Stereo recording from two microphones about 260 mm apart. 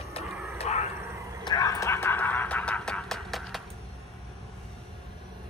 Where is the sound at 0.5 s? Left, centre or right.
Left.